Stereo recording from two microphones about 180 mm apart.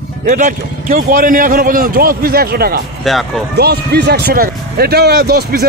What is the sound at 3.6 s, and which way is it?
Speech, 65° right (ahead or behind).